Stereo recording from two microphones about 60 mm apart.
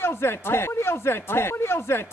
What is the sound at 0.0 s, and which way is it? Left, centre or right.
Speech, left.